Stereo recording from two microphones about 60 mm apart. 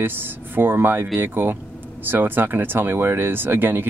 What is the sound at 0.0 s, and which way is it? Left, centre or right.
Speech, right.